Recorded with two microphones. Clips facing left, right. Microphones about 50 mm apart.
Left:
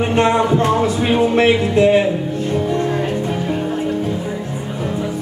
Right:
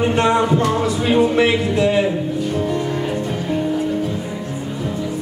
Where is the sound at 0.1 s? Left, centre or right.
Left.